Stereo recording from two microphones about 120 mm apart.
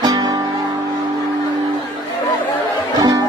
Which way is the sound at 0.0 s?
30° right (ahead or behind).